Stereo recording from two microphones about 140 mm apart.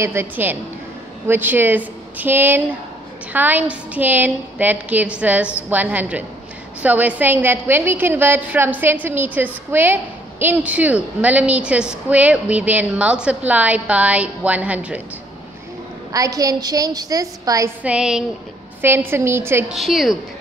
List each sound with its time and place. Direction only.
0.0 s a woman's voice: 15° right (ahead or behind)
16.1 s a woman's voice: 25° right (ahead or behind)
17.8 s a woman's voice: 5° right (ahead or behind)
19.7 s a woman's voice: centre (ahead or behind)